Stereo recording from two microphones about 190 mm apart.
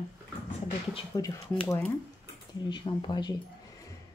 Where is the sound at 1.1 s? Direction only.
15° left (ahead or behind).